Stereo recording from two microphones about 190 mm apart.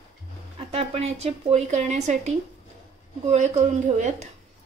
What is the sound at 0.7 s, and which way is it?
A woman's voice, 35° right (ahead or behind).